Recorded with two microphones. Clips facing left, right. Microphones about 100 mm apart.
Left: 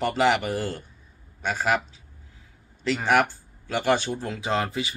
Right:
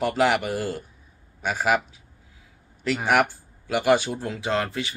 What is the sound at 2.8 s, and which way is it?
Speech, 5° right (ahead or behind).